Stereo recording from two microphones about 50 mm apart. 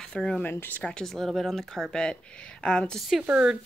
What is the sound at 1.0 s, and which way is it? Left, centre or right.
Speech, centre.